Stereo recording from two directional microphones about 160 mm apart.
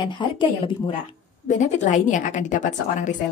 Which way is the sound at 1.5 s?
50° left (ahead or behind).